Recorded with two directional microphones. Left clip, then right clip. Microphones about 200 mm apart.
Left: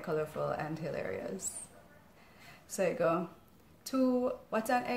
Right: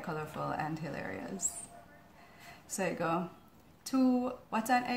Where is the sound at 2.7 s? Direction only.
5° left (ahead or behind).